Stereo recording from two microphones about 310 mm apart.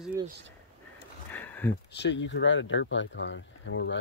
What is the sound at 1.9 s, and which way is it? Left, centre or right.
Speech, left.